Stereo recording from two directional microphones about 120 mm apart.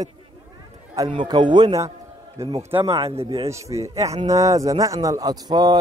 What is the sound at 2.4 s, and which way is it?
Speech, 25° right (ahead or behind).